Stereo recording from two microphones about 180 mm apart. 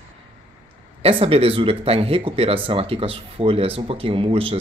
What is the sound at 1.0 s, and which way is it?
Speech, 35° right (ahead or behind).